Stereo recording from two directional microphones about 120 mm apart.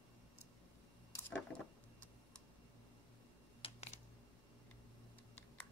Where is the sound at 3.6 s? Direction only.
50° left (ahead or behind).